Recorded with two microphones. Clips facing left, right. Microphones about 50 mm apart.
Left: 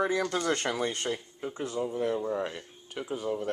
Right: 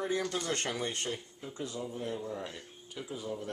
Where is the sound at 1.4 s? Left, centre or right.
Left.